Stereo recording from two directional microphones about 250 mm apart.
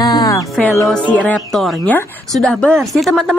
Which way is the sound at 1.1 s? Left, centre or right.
Centre.